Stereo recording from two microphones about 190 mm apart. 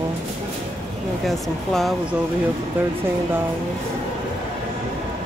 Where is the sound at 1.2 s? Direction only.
Centre (ahead or behind).